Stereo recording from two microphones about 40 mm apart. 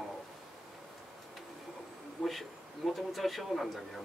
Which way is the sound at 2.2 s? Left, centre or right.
Centre.